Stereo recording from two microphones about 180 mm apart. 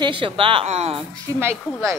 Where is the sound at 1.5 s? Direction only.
Centre (ahead or behind).